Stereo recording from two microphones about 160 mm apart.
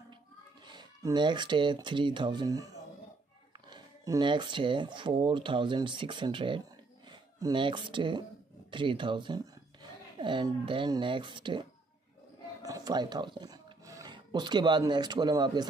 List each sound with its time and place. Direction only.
0.7 s speech: 30° right (ahead or behind)
3.7 s speech: 25° right (ahead or behind)
12.6 s speech: 25° right (ahead or behind)